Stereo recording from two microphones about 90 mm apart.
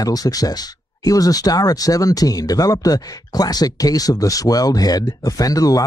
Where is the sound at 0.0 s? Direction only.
45° left (ahead or behind).